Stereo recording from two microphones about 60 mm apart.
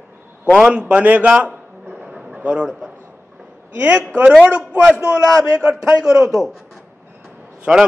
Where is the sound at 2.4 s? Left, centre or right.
Centre.